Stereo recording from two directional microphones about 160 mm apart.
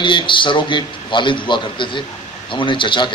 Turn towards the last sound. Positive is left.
turn(degrees=30)  # may be behind; listen again after turning